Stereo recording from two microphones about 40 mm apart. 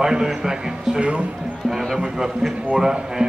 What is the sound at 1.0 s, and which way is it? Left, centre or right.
Speech, right.